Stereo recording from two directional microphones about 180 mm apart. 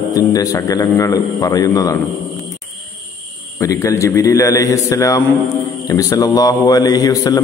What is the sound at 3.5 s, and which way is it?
A man's voice, 15° left (ahead or behind).